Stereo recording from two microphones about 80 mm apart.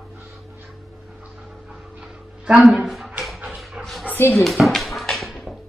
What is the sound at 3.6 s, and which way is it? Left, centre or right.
Dog, centre.